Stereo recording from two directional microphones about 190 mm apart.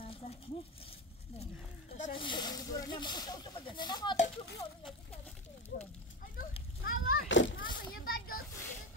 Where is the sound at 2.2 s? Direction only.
25° left (ahead or behind).